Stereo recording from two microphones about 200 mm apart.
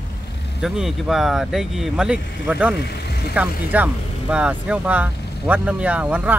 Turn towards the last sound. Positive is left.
turn(degrees=-5)  # may be behind; listen again after turning